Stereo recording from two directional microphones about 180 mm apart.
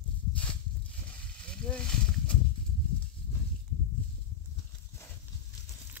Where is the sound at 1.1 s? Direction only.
5° left (ahead or behind).